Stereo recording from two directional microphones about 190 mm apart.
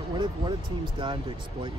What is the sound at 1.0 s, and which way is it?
Speech, 25° right (ahead or behind).